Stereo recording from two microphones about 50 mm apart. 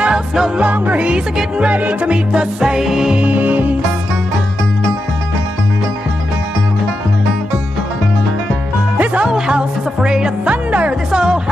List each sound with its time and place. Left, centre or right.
0.0 s music: centre
0.6 s music: right
2.3 s music: centre
3.2 s music: right
8.9 s music: right
9.2 s music: centre
11.1 s music: centre